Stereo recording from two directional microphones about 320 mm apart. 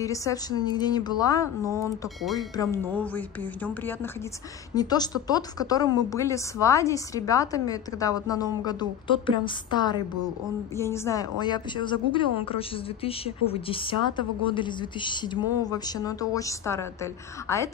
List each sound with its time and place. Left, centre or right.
0.0 s speech: centre